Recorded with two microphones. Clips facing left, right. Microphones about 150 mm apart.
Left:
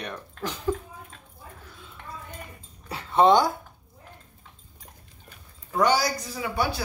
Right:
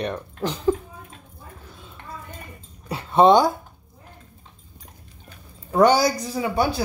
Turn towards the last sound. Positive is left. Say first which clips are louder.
# right 5 dB
turn(degrees=-25)  # may be behind; listen again after turning